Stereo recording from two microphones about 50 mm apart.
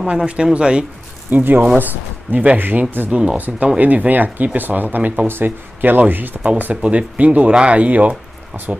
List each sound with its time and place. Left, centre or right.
0.0 s speech: centre
1.3 s speech: right
5.2 s speech: right
6.6 s speech: right